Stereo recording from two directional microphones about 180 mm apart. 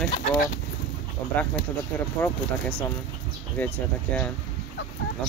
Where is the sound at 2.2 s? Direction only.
5° left (ahead or behind).